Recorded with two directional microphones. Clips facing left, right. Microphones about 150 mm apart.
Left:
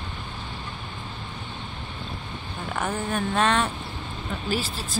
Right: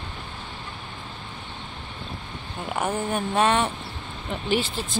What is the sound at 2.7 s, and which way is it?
Speech, 10° right (ahead or behind).